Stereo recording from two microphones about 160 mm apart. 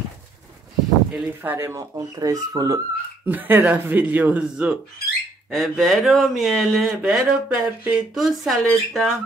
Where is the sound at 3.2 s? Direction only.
10° right (ahead or behind).